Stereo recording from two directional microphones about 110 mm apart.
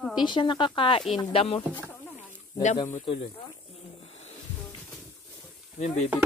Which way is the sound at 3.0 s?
50° left (ahead or behind).